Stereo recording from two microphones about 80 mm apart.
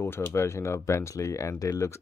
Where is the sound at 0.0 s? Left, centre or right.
Left.